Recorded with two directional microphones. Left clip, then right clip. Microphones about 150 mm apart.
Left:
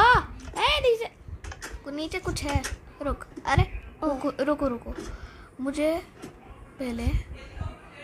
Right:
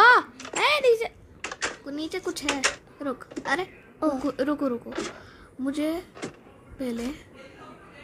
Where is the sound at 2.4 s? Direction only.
30° right (ahead or behind).